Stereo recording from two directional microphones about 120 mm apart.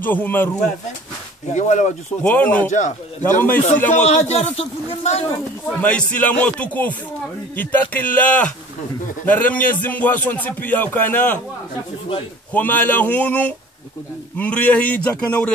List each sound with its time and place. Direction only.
0.0 s speech: 15° left (ahead or behind)
1.5 s a man's voice: 80° left
2.2 s speech: 15° left (ahead or behind)
4.0 s a man's voice: 70° left (ahead or behind)
5.7 s speech: 10° left (ahead or behind)
12.5 s speech: 15° left (ahead or behind)